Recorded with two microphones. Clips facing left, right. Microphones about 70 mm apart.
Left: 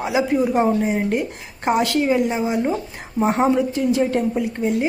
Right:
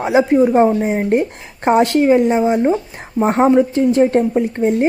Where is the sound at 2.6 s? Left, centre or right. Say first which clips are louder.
Right 6 dB; right.